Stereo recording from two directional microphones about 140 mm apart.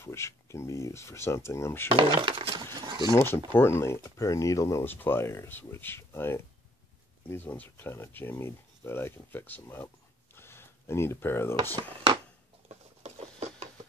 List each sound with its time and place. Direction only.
0.0 s speech: 20° left (ahead or behind)
1.9 s speech: 35° right (ahead or behind)
3.5 s speech: 20° left (ahead or behind)
10.3 s a sound: 15° left (ahead or behind)
11.7 s speech: 30° right (ahead or behind)
12.6 s patter: 50° right (ahead or behind)